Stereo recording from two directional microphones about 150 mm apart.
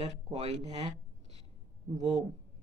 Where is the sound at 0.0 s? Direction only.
45° right (ahead or behind).